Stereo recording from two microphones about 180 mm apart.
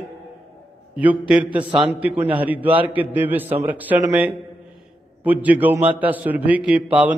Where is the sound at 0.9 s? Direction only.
10° right (ahead or behind).